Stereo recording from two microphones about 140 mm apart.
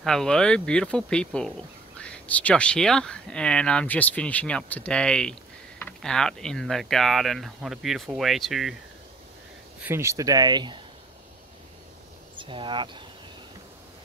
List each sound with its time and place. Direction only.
0.0 s speech: 5° left (ahead or behind)
9.8 s speech: 15° right (ahead or behind); by 10.8 s 30° right (ahead or behind)
12.4 s speech: 35° right (ahead or behind)